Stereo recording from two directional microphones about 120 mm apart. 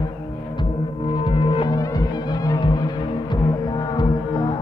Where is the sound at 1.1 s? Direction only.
40° left (ahead or behind).